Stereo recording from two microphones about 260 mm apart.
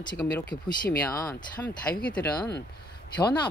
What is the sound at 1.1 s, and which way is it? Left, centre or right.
Speech, centre.